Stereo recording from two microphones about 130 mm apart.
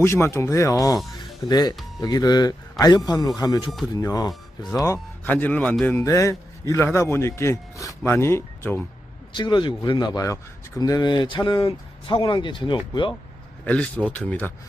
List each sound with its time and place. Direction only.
0.0 s speech: 20° left (ahead or behind)
1.1 s music: 30° left (ahead or behind)
2.0 s speech: 30° left (ahead or behind)
5.2 s a man's voice: 10° left (ahead or behind)
6.0 s speech: 25° left (ahead or behind)
9.3 s speech: 35° left (ahead or behind)
13.7 s a man's voice: 10° left (ahead or behind)